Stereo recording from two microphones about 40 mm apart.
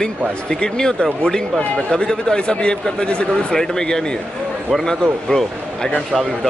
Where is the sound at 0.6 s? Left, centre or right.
Centre.